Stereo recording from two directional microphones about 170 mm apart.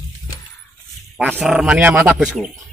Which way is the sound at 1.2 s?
10° right (ahead or behind).